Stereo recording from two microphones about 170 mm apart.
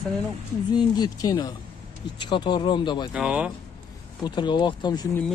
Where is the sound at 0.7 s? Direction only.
25° left (ahead or behind).